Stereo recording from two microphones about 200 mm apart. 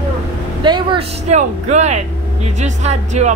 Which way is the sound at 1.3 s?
35° right (ahead or behind).